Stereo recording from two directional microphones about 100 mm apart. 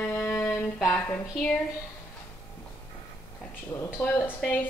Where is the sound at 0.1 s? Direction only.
20° left (ahead or behind).